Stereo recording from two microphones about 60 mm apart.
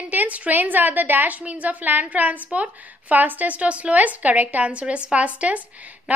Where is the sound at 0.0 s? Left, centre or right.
Right.